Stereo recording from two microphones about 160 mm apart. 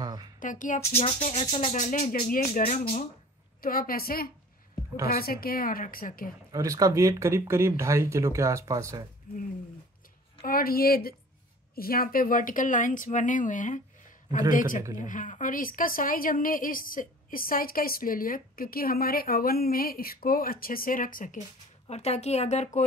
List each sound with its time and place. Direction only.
0.0 s a sound: 25° right (ahead or behind)
0.4 s speech: 55° left (ahead or behind)
0.7 s speech: 40° left (ahead or behind); by 2.6 s 60° left (ahead or behind)
3.6 s a woman's voice: 65° left (ahead or behind)
6.5 s speech: 20° right (ahead or behind)
10.4 s a woman's voice: 65° left (ahead or behind)
21.8 s speech: 40° left (ahead or behind)